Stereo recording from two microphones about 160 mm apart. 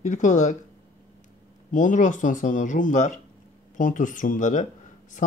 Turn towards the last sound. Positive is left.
turn(degrees=50)  # may be behind; listen again after turning